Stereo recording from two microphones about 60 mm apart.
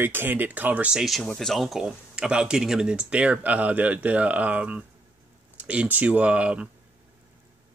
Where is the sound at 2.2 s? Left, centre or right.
Centre.